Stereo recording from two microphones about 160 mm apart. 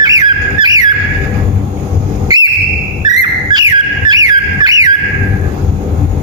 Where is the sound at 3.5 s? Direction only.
25° right (ahead or behind).